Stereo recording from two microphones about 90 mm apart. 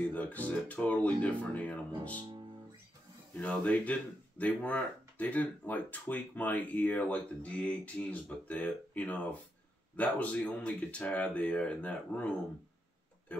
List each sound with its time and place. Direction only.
0.0 s speech: 15° left (ahead or behind)
3.3 s speech: 15° left (ahead or behind)